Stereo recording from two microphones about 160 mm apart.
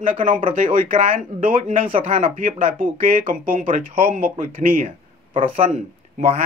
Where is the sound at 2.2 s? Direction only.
60° right (ahead or behind).